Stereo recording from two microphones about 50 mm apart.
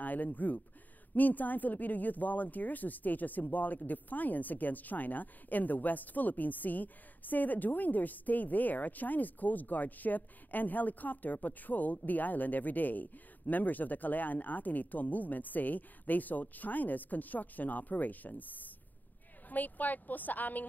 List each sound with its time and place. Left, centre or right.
0.0 s speech: left